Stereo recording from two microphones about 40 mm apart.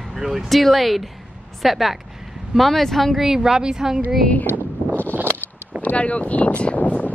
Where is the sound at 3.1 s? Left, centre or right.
Centre.